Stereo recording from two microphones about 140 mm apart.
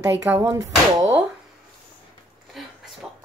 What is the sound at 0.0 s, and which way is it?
Speech, 20° right (ahead or behind).